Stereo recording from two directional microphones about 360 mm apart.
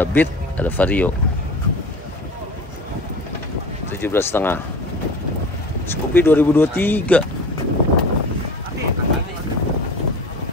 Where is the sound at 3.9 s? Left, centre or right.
Centre.